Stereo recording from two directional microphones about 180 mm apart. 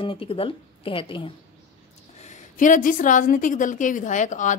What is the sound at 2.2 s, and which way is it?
Speech, 45° left (ahead or behind).